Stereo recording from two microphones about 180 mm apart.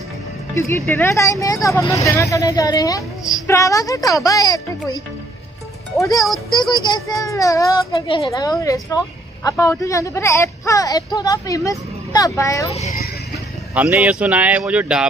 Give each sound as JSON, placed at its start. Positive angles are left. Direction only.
{"t": 0.6, "sound": "a child's voice", "side_deg": 15}
{"t": 5.9, "sound": "a woman's voice", "side_deg": 20}
{"t": 13.7, "sound": "speech", "side_deg": -10}